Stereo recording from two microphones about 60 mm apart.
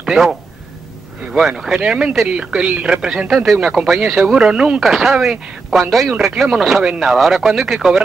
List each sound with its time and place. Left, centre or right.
0.0 s speech: centre
1.8 s speech: centre
3.3 s speech: centre